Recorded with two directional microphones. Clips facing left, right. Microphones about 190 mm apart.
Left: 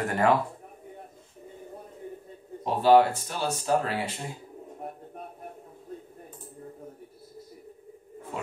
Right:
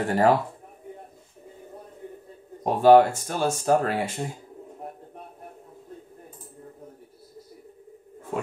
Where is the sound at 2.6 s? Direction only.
50° right (ahead or behind).